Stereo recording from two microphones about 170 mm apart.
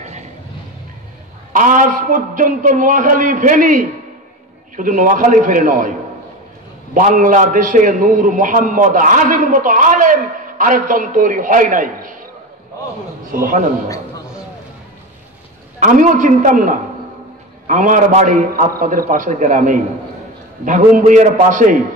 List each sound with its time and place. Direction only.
1.5 s a man's voice: 50° right (ahead or behind)
13.3 s a man's voice: 50° right (ahead or behind)
15.8 s a man's voice: 45° right (ahead or behind)